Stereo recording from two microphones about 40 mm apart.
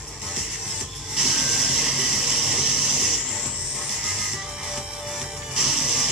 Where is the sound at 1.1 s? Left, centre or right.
Centre.